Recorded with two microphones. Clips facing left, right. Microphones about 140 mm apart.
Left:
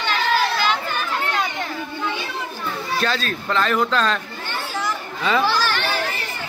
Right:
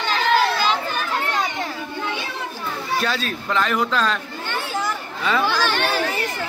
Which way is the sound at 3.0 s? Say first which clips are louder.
Left 3 dB; 10° right (ahead or behind).